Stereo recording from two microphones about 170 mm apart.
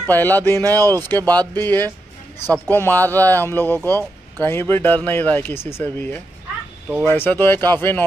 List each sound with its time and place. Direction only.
0.0 s speech: 10° left (ahead or behind)
1.2 s speech: 25° right (ahead or behind)
1.5 s speech: 10° left (ahead or behind)